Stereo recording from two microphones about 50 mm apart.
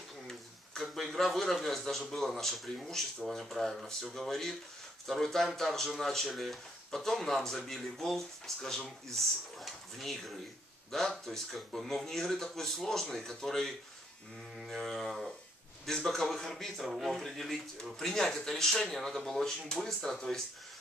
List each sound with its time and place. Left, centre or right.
0.9 s speech: centre
14.6 s music: centre
15.8 s speech: centre
17.2 s speech: centre